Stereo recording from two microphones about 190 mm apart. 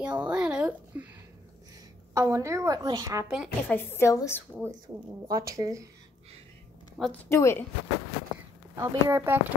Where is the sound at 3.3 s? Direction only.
Centre (ahead or behind).